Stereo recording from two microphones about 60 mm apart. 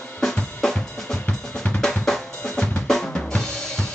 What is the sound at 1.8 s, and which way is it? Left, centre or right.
Drum, centre.